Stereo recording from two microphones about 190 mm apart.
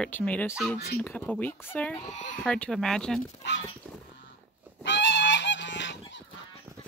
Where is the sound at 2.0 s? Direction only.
40° left (ahead or behind).